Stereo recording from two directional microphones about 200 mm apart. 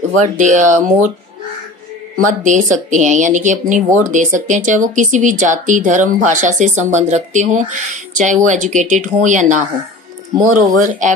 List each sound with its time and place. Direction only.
0.2 s speech: 40° right (ahead or behind)
2.1 s speech: 40° right (ahead or behind)